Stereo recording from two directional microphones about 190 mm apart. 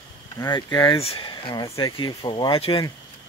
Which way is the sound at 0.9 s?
30° left (ahead or behind).